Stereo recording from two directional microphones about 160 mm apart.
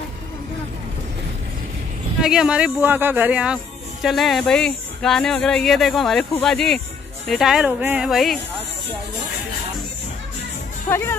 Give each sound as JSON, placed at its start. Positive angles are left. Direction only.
{"t": 2.2, "sound": "speech", "side_deg": -5}
{"t": 10.9, "sound": "speech", "side_deg": 15}